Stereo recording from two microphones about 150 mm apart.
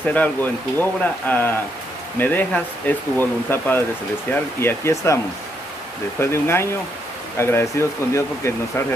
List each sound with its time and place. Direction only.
0.1 s speech: 10° left (ahead or behind)